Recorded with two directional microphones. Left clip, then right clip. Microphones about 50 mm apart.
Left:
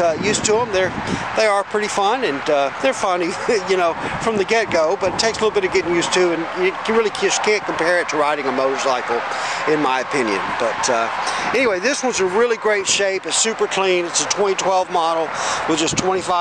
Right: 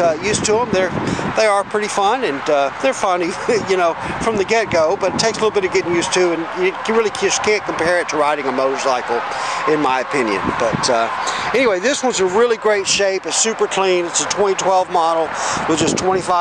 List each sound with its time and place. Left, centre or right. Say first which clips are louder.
0.0 s speech: right 1 dB; centre
11.7 s speech: right 2 dB; right